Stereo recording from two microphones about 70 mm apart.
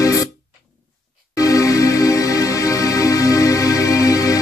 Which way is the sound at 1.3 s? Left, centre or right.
Left.